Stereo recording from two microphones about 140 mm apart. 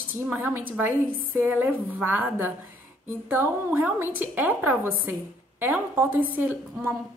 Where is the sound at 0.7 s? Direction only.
15° right (ahead or behind).